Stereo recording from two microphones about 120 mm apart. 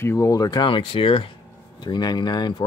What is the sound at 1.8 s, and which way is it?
Speech, 35° left (ahead or behind).